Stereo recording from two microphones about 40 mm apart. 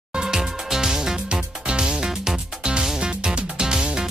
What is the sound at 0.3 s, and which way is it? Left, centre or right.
Music, centre.